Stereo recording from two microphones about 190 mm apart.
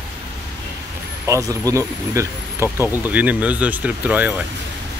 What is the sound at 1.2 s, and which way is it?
Speech, 15° right (ahead or behind).